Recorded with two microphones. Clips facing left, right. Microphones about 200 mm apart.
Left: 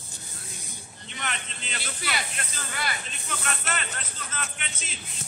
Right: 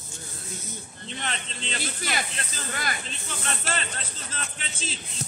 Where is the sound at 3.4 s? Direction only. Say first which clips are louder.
Right 2 dB; 30° right (ahead or behind).